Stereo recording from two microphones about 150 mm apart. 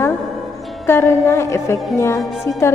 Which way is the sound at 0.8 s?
15° left (ahead or behind).